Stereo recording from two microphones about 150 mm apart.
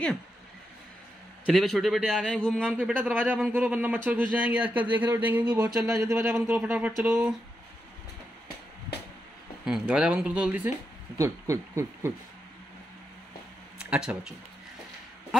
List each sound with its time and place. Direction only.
1.5 s a man's voice: centre (ahead or behind)
2.7 s speech: 10° right (ahead or behind)
9.7 s speech: 5° right (ahead or behind)
13.7 s speech: 5° right (ahead or behind)